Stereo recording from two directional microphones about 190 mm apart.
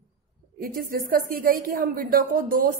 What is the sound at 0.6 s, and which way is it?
A woman's voice, 50° right (ahead or behind).